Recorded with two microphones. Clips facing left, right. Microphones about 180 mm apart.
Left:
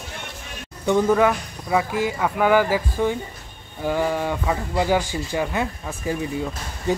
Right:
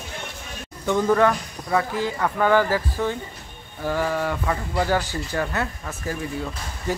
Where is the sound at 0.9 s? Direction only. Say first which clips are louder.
Left 1 dB; 10° left (ahead or behind).